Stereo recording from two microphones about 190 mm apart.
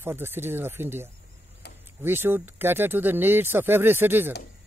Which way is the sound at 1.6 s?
60° left (ahead or behind).